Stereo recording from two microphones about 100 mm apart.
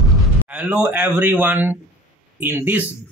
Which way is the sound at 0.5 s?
15° right (ahead or behind).